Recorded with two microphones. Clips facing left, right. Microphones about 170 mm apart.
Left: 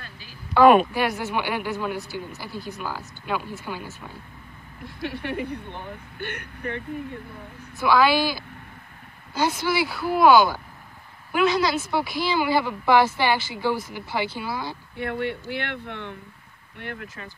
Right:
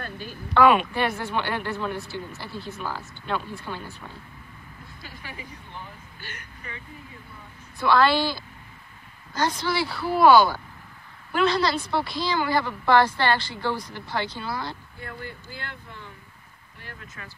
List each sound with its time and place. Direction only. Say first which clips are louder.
0.0 s a sound: right 9 dB; 55° right (ahead or behind)
0.9 s a woman's voice: left 1 dB; 5° left (ahead or behind)
4.8 s speech: left 14 dB; 70° left (ahead or behind)
7.8 s a woman's voice: left 1 dB; 10° left (ahead or behind)
15.0 s speech: left 11 dB; 70° left (ahead or behind)